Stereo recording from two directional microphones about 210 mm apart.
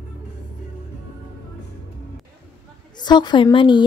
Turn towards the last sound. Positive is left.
turn(degrees=25)  # may be behind; listen again after turning